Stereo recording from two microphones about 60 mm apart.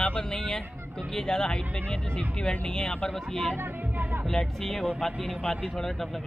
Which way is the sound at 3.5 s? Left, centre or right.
Right.